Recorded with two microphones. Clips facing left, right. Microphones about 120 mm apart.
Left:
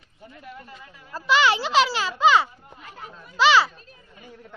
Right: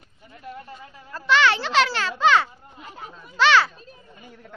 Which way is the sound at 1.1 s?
10° left (ahead or behind).